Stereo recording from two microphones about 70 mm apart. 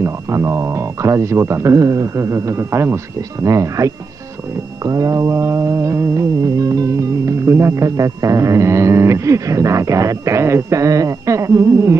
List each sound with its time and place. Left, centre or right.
0.0 s music: right
3.2 s music: right